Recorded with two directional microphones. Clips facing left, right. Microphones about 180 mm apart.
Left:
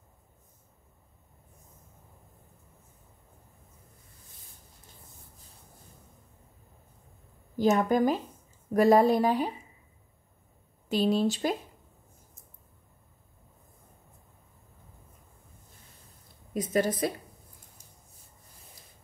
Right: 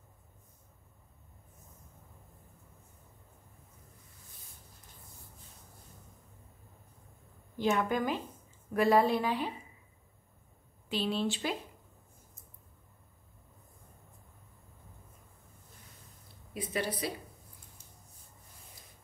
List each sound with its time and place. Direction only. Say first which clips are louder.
7.5 s a woman's voice: left 6 dB; 40° left (ahead or behind)
10.9 s a woman's voice: left 7 dB; 40° left (ahead or behind)
16.5 s speech: left 8 dB; 45° left (ahead or behind)